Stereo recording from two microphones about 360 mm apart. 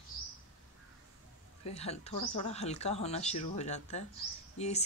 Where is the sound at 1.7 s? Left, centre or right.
Centre.